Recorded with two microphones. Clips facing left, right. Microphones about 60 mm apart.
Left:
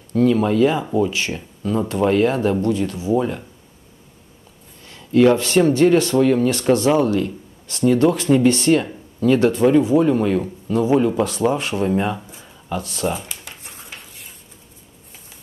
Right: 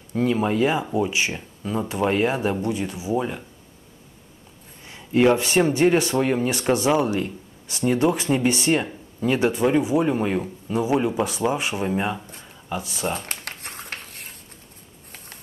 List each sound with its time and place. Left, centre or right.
0.1 s speech: centre
4.8 s speech: centre
13.2 s a sound: right